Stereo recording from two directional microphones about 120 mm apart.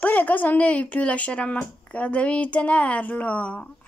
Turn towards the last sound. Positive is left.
turn(degrees=10)  # may be behind; listen again after turning